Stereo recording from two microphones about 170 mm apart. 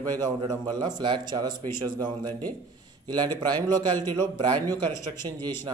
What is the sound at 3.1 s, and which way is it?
Speech, 25° right (ahead or behind).